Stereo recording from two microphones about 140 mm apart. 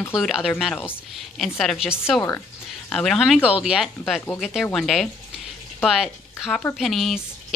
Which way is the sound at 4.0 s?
10° left (ahead or behind).